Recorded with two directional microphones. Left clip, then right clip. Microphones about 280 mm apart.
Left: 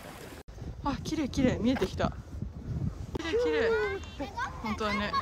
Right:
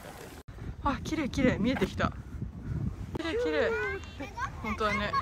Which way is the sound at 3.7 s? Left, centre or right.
Left.